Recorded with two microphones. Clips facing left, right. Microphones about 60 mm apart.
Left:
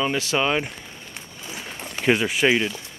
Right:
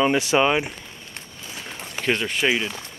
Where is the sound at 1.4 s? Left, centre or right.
Centre.